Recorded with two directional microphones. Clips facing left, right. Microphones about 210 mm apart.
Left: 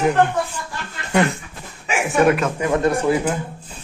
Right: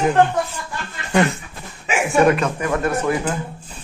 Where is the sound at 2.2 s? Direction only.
5° left (ahead or behind).